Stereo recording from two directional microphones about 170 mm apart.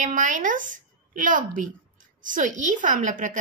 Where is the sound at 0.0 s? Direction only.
50° right (ahead or behind).